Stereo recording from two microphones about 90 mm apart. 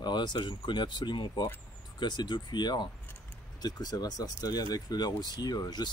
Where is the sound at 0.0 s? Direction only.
55° left (ahead or behind).